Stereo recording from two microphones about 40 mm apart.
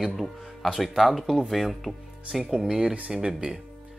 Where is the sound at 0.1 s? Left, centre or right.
Centre.